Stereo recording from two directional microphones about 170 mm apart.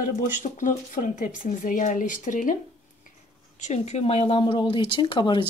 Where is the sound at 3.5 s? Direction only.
45° left (ahead or behind); by 5.4 s 25° left (ahead or behind).